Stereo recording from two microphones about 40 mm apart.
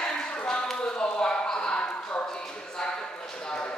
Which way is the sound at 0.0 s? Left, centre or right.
Left.